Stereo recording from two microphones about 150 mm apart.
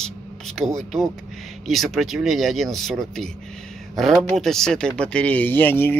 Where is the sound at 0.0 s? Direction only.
5° left (ahead or behind).